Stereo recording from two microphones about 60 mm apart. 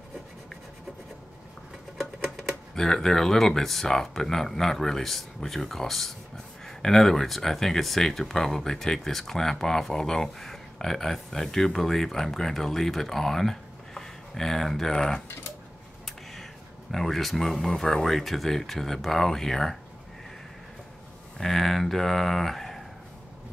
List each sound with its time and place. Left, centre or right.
2.0 s speech: centre
16.9 s speech: centre
21.4 s speech: centre